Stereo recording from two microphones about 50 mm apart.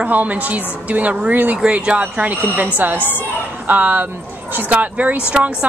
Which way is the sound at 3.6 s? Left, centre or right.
Right.